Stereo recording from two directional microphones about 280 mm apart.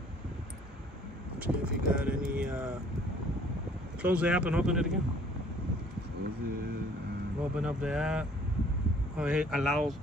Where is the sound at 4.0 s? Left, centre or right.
Centre.